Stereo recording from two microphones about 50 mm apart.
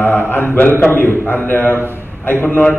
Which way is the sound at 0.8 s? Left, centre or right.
Left.